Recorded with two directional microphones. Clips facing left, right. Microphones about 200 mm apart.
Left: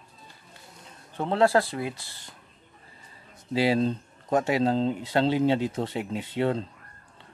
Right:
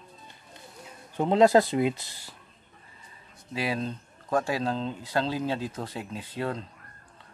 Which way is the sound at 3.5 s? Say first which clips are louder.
Left 7 dB; 30° left (ahead or behind).